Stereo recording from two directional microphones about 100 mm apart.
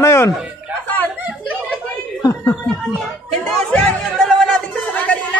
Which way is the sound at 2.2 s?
35° left (ahead or behind).